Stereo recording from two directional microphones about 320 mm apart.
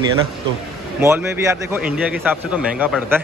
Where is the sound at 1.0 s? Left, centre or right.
Centre.